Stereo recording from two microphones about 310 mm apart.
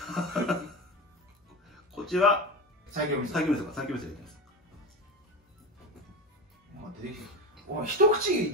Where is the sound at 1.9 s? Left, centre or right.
Centre.